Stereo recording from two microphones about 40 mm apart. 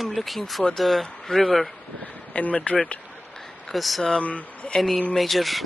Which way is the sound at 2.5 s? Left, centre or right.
Left.